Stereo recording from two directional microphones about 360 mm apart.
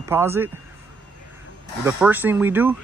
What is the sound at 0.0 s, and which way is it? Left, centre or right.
Speech, centre.